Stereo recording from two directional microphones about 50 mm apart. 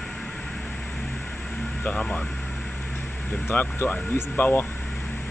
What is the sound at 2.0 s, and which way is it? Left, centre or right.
Speech, centre.